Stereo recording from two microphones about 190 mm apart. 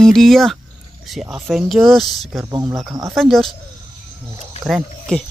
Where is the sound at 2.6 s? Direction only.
15° right (ahead or behind).